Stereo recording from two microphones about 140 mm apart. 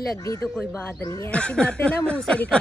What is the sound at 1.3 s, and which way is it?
Speech, 5° left (ahead or behind).